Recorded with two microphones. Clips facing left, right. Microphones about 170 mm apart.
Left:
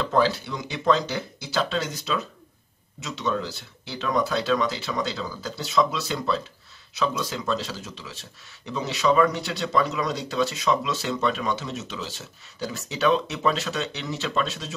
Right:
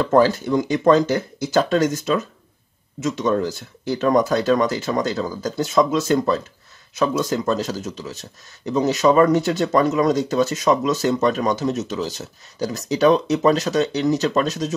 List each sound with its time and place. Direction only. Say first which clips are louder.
0.0 s speech: right 6 dB; 45° right (ahead or behind)